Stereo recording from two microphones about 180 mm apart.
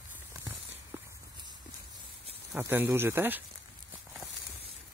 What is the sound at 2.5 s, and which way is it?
Speech, 10° right (ahead or behind).